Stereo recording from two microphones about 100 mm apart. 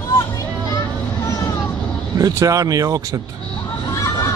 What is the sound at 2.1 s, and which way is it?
Speech, 35° right (ahead or behind).